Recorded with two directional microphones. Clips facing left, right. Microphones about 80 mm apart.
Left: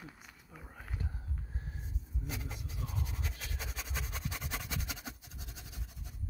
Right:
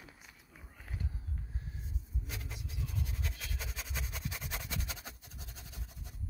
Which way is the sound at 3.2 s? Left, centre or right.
Left.